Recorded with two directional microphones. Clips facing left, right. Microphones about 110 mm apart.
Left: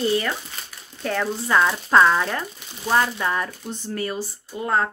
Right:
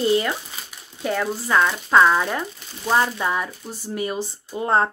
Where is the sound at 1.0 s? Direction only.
5° right (ahead or behind).